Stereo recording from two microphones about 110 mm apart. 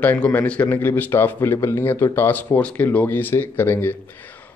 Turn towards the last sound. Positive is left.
turn(degrees=20)  # may be behind; listen again after turning